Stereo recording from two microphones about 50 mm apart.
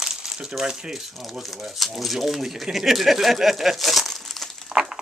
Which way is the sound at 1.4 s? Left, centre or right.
Centre.